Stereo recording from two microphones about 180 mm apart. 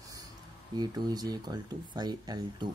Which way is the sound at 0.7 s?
25° right (ahead or behind).